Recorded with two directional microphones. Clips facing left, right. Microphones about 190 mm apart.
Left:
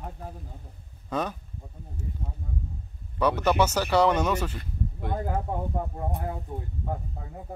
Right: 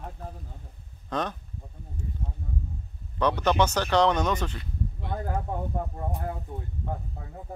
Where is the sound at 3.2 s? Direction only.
10° left (ahead or behind).